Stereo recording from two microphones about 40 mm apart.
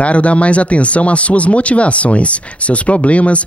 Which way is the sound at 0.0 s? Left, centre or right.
Left.